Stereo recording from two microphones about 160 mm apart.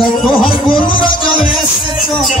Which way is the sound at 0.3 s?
30° left (ahead or behind).